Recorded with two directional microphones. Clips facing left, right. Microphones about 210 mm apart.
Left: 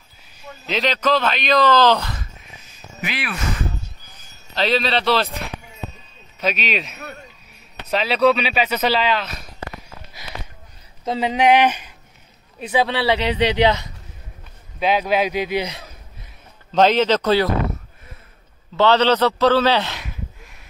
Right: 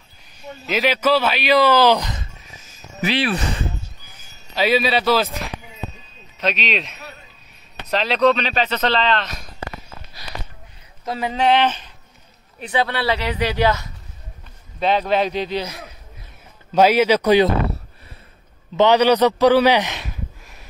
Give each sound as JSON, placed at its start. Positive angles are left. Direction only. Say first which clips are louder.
{"t": 0.7, "sound": "speech", "louder": "right 2 dB", "side_deg": -5}
{"t": 3.0, "sound": "speech", "louder": "right 7 dB", "side_deg": -35}
{"t": 4.6, "sound": "speech", "louder": "right 2 dB", "side_deg": -5}
{"t": 11.1, "sound": "speech", "louder": "left 2 dB", "side_deg": 20}
{"t": 14.8, "sound": "speech", "louder": "even", "side_deg": 5}
{"t": 16.7, "sound": "speech", "louder": "right 1 dB", "side_deg": -10}
{"t": 18.8, "sound": "speech", "louder": "right 2 dB", "side_deg": -15}